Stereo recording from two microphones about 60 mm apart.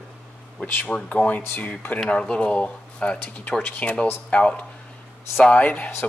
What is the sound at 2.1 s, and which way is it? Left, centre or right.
Speech, centre.